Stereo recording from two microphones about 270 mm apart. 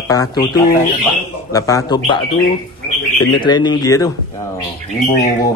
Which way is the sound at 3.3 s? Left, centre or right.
Centre.